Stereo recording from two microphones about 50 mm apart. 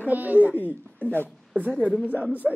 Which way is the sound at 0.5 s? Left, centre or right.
Left.